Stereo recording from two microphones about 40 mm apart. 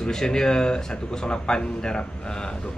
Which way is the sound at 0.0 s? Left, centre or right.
Centre.